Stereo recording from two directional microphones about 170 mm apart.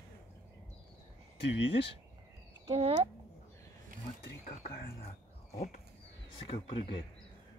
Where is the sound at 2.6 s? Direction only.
30° right (ahead or behind).